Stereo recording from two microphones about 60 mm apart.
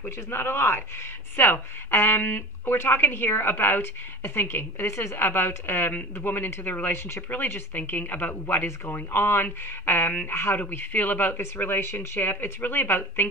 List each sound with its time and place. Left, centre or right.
0.0 s speech: left